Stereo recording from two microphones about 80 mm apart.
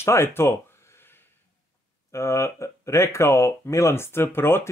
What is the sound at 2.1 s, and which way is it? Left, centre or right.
Speech, left.